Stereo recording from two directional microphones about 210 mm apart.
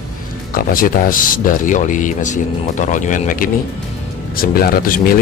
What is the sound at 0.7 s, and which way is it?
Speech, 40° left (ahead or behind).